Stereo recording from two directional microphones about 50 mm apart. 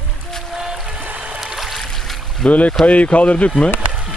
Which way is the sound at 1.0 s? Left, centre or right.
Right.